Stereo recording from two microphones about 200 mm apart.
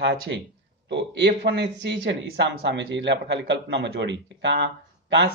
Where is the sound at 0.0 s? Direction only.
60° right (ahead or behind).